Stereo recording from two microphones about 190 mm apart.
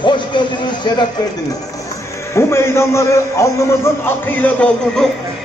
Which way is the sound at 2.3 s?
15° left (ahead or behind).